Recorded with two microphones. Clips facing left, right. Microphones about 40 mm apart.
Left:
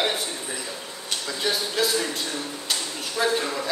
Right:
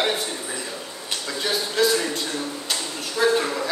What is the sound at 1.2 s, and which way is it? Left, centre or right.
Speech, centre.